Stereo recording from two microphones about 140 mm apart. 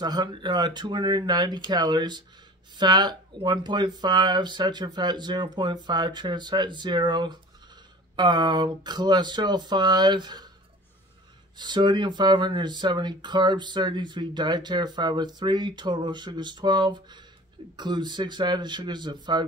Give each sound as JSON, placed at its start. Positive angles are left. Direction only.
{"t": 0.0, "sound": "speech", "side_deg": -30}
{"t": 11.5, "sound": "speech", "side_deg": -35}